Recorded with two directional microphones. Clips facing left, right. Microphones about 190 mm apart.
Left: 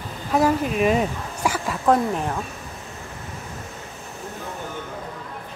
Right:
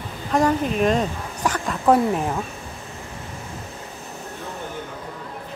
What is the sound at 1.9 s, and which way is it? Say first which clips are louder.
Speech: right 2 dB; 5° right (ahead or behind).